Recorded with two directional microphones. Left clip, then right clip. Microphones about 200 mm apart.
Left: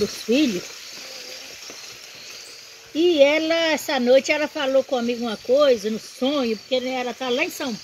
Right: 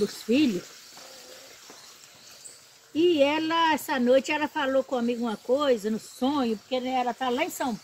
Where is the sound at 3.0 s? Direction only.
15° right (ahead or behind).